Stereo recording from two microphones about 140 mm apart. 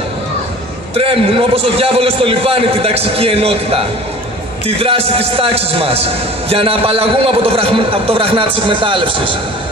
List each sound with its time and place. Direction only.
0.9 s a man's voice: 45° right (ahead or behind)